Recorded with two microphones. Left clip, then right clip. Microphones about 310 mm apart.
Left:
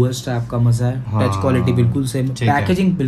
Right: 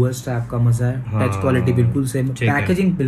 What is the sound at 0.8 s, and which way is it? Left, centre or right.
A man's voice, centre.